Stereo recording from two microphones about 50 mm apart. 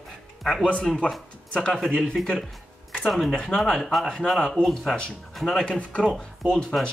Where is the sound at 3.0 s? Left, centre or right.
Centre.